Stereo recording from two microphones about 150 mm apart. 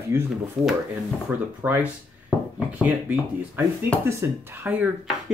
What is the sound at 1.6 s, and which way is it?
Speech, 10° right (ahead or behind).